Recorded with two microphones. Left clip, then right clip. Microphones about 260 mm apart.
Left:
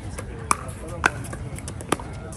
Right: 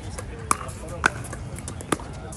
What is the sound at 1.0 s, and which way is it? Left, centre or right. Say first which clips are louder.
Vehicle: even; left.